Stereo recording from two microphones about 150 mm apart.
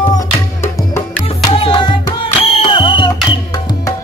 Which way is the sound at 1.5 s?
35° left (ahead or behind).